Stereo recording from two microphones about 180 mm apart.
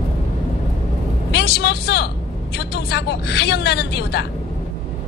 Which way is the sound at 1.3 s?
65° left (ahead or behind).